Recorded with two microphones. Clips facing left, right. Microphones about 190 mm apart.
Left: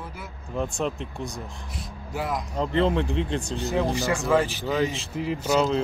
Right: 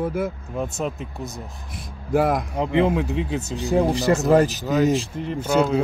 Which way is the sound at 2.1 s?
55° right (ahead or behind).